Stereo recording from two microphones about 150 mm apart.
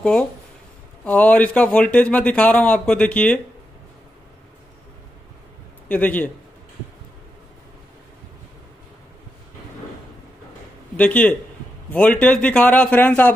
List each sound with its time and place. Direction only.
1.0 s a man's voice: 10° left (ahead or behind)
5.9 s a man's voice: 10° left (ahead or behind)
11.0 s a man's voice: 10° left (ahead or behind)